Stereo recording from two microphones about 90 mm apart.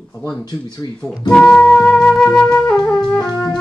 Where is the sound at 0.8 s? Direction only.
50° left (ahead or behind).